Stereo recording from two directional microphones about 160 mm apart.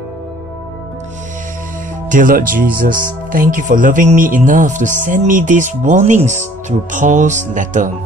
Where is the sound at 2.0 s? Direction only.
55° right (ahead or behind).